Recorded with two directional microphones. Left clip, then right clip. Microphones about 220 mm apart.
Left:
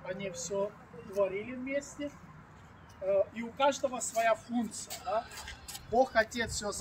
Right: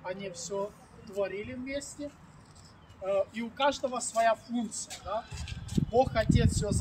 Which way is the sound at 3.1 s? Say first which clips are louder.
Even; 40° right (ahead or behind).